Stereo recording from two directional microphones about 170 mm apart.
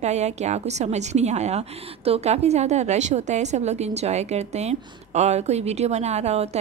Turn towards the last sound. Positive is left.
turn(degrees=-40)  # may be behind; listen again after turning